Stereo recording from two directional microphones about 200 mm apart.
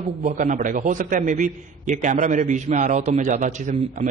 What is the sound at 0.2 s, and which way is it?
A man's voice, 40° right (ahead or behind).